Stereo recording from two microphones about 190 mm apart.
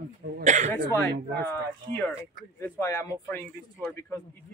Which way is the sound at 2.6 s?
15° left (ahead or behind).